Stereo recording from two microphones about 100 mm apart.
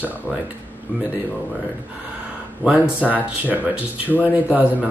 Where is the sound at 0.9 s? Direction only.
15° right (ahead or behind).